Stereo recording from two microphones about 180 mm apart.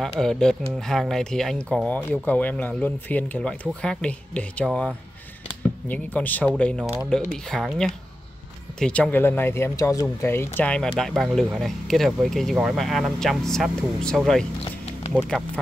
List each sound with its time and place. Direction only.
0.0 s speech: 5° left (ahead or behind)
14.6 s music: 35° left (ahead or behind)
15.1 s speech: centre (ahead or behind)